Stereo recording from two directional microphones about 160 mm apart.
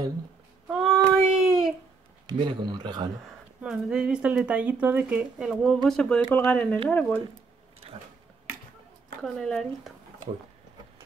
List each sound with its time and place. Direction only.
0.7 s child singing: 5° right (ahead or behind)
2.2 s speech: 30° right (ahead or behind)
3.6 s speech: 5° right (ahead or behind); by 7.2 s 10° left (ahead or behind)
9.2 s speech: 5° left (ahead or behind)